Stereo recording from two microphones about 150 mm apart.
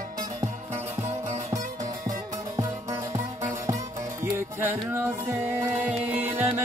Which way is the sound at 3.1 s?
25° right (ahead or behind).